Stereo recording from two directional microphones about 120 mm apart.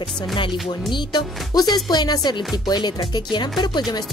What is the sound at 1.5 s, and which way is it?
Speech, 30° left (ahead or behind).